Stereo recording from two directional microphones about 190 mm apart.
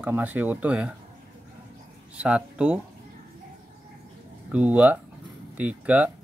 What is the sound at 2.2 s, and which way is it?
Speech, 5° right (ahead or behind).